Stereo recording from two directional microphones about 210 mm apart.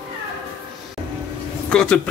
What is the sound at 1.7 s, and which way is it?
Speech, 5° left (ahead or behind).